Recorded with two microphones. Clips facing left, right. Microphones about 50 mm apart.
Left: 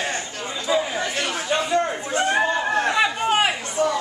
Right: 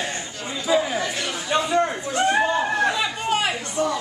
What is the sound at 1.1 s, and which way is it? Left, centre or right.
Chatter, left.